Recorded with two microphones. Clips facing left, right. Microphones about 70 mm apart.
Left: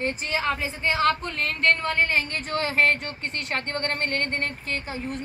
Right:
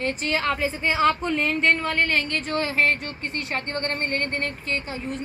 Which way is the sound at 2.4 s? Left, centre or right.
Left.